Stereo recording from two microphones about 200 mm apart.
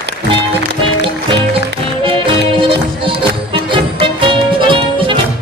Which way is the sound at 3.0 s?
25° right (ahead or behind).